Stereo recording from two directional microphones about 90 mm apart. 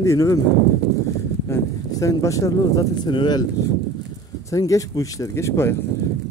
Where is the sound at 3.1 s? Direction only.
55° left (ahead or behind).